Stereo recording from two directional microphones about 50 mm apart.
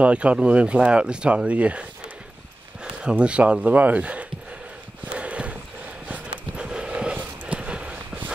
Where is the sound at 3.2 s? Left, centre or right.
Right.